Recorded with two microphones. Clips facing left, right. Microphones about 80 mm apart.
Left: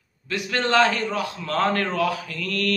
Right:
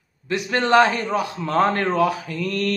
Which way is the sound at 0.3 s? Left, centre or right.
Right.